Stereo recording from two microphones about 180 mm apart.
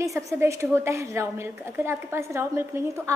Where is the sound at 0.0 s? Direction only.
15° right (ahead or behind).